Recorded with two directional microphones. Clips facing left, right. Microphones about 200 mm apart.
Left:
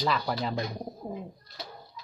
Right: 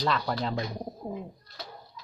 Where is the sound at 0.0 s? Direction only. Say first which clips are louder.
Even; 5° left (ahead or behind).